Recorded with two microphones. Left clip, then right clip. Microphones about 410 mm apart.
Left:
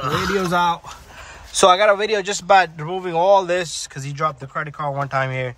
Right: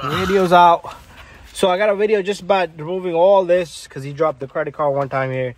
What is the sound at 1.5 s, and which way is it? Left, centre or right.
Speech, centre.